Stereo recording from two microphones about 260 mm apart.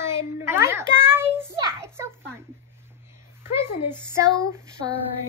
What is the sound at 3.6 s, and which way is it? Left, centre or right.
Speech, centre.